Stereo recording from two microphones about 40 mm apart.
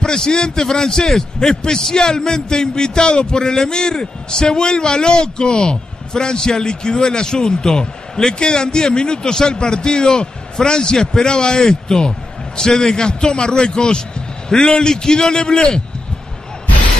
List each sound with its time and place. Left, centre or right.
0.0 s a man's voice: centre